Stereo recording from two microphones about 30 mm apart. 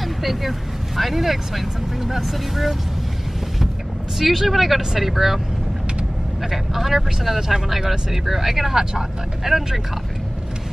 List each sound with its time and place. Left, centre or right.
0.2 s speech: centre
4.2 s speech: centre
6.5 s speech: centre